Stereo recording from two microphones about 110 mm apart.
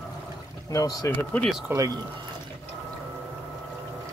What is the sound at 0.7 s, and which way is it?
Speech, 35° left (ahead or behind).